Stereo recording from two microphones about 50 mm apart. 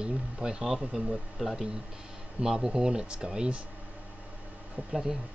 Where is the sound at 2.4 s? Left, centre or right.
Centre.